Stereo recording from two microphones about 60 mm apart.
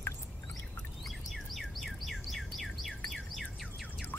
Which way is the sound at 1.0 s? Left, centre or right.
Centre.